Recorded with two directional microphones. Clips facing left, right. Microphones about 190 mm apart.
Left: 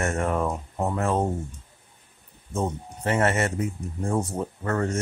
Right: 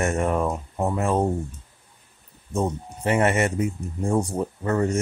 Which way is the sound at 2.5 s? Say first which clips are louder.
Right 3 dB; 15° right (ahead or behind).